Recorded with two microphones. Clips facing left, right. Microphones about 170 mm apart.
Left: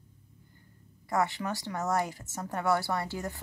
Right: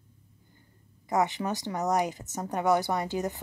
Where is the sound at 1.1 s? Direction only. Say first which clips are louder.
Right 3 dB; 20° right (ahead or behind).